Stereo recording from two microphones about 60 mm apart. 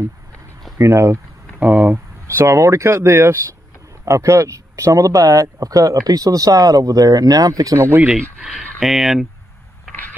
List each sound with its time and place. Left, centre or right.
0.7 s speech: right
1.6 s speech: right
2.2 s speech: right
4.0 s speech: right
8.1 s speech: centre